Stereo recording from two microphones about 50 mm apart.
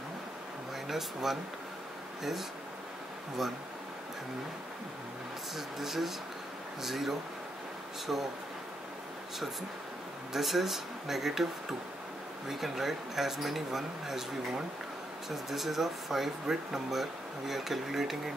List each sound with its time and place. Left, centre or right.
0.8 s speech: centre
5.8 s speech: centre
8.1 s speech: centre
10.3 s speech: centre
12.4 s speech: centre